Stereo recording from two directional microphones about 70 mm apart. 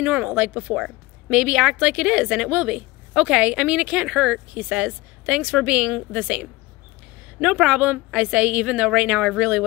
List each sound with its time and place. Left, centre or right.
0.0 s a woman's voice: right